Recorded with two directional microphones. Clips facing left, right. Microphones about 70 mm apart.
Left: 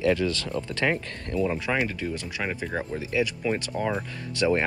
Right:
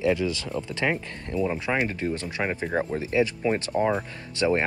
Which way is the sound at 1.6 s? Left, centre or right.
Right.